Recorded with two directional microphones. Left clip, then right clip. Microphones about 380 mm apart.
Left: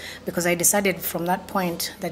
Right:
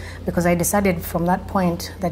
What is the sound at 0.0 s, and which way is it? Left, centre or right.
A woman's voice, right.